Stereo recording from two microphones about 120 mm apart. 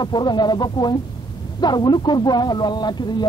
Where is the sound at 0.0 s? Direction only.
35° left (ahead or behind).